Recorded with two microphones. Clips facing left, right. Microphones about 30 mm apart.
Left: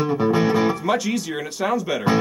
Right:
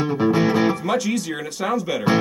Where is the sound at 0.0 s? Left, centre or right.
Right.